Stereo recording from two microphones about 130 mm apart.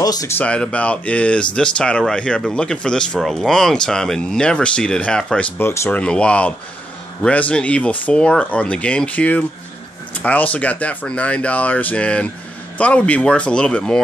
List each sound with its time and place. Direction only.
0.0 s speech: 30° left (ahead or behind)
0.4 s speech: 10° left (ahead or behind)
5.6 s speech: 20° left (ahead or behind)